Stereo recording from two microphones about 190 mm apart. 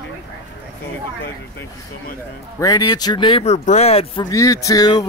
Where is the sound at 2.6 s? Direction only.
20° left (ahead or behind).